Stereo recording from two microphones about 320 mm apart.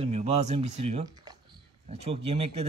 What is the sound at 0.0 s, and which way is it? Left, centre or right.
A man's voice, centre.